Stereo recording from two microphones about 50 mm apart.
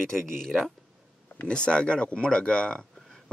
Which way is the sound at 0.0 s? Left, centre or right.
Centre.